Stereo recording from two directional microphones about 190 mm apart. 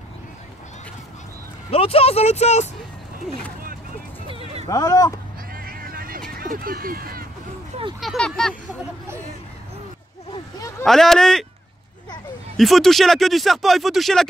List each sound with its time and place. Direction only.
1.7 s speech: 30° left (ahead or behind)
4.3 s a sound: 30° right (ahead or behind)
4.6 s speech: 20° left (ahead or behind)
5.5 s vehicle: 50° right (ahead or behind)
6.3 s speech: 50° right (ahead or behind)
8.0 s speech: centre (ahead or behind)
10.9 s speech: centre (ahead or behind)
12.5 s speech: centre (ahead or behind)